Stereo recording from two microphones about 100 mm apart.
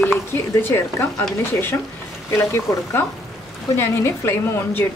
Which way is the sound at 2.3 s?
25° left (ahead or behind).